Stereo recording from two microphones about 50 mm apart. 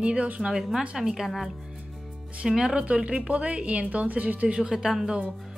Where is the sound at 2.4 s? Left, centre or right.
Centre.